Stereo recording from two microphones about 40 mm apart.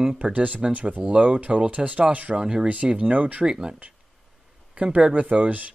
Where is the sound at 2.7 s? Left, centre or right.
Right.